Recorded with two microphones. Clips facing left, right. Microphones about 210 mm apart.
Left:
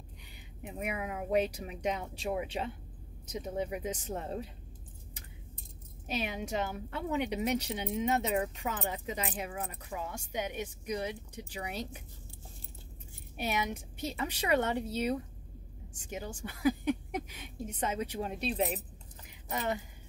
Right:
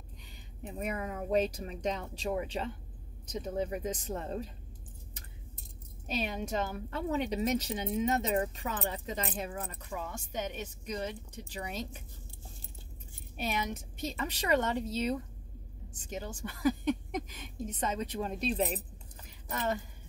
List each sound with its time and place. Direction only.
0.6 s speech: 10° left (ahead or behind)
6.0 s speech: 15° left (ahead or behind)
13.5 s speech: 10° left (ahead or behind)
19.2 s a sound: 15° left (ahead or behind)